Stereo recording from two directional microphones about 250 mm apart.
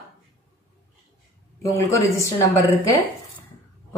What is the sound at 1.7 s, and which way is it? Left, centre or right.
Speech, centre.